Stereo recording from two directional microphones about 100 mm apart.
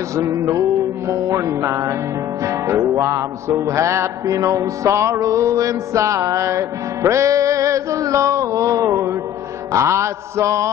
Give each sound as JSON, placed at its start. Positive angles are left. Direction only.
{"t": 0.1, "sound": "music", "side_deg": -30}